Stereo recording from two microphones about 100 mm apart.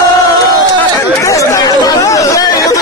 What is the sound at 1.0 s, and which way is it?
Chatter, 30° left (ahead or behind).